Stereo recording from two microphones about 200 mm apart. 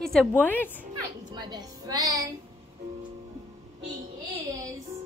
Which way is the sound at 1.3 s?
20° right (ahead or behind).